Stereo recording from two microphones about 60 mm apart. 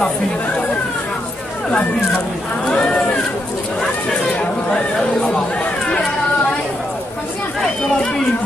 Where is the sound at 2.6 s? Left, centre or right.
Centre.